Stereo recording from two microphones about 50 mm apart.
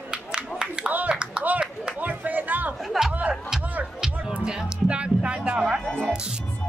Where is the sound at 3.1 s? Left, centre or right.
Right.